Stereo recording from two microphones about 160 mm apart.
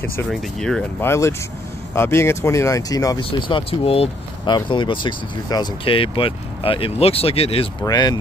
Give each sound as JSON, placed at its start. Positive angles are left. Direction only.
{"t": 0.0, "sound": "speech", "side_deg": 15}
{"t": 0.3, "sound": "speech", "side_deg": 5}
{"t": 1.0, "sound": "speech", "side_deg": 15}
{"t": 7.8, "sound": "speech", "side_deg": 25}